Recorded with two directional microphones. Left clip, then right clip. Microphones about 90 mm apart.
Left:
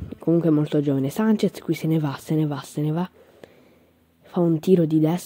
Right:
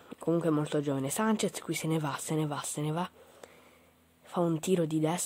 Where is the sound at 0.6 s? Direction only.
35° left (ahead or behind).